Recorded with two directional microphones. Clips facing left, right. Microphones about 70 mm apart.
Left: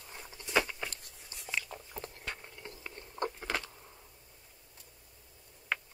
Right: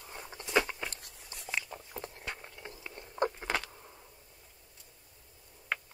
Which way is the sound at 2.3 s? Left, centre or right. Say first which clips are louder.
Right 1 dB; centre.